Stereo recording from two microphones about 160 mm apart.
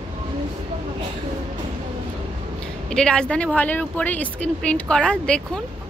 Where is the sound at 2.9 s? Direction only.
5° left (ahead or behind).